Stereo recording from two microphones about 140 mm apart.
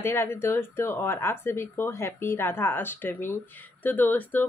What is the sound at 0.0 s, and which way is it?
Speech, 15° left (ahead or behind).